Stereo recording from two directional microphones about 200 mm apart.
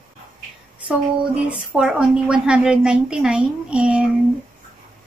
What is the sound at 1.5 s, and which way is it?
Speech, 5° right (ahead or behind).